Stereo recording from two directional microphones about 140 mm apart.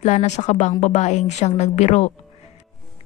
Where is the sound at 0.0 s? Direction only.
55° left (ahead or behind).